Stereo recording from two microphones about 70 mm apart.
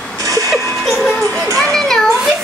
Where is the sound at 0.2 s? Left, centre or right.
Right.